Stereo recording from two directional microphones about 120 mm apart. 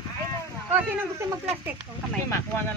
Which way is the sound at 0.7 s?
15° right (ahead or behind).